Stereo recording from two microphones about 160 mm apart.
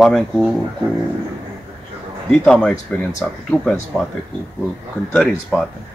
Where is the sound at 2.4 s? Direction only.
5° left (ahead or behind).